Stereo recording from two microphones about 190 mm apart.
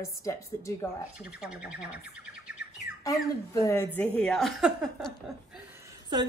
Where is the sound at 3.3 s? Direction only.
20° left (ahead or behind).